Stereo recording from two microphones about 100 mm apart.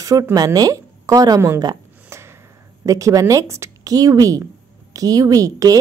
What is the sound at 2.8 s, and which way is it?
A woman's voice, 35° right (ahead or behind).